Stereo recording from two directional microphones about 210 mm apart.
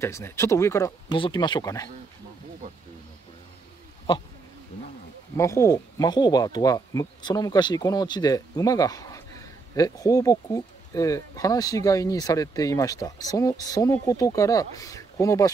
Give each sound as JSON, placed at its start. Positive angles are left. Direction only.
{"t": 0.0, "sound": "speech", "side_deg": 10}
{"t": 5.4, "sound": "speech", "side_deg": 15}